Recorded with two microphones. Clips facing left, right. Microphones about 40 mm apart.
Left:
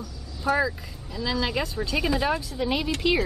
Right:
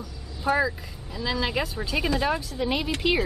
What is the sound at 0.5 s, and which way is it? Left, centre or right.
Speech, right.